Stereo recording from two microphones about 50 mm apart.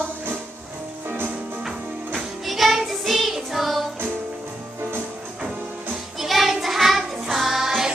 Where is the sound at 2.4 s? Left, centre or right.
Centre.